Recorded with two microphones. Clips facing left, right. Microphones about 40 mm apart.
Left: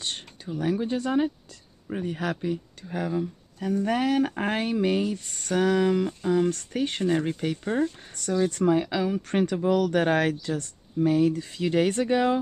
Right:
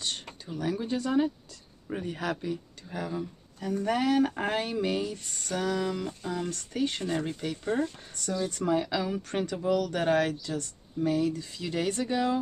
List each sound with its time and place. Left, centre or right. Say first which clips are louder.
0.5 s speech: left 4 dB; left
1.9 s speech: left 3 dB; centre
2.5 s speech: left 4 dB; left
3.1 s speech: left 6 dB; centre
6.5 s speech: left 2 dB; left
8.3 s speech: left 6 dB; left
8.6 s speech: left 1 dB; left